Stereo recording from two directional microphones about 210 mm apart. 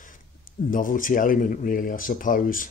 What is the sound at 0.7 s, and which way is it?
Speech, 40° left (ahead or behind).